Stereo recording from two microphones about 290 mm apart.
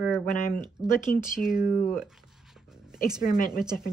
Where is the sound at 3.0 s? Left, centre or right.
Centre.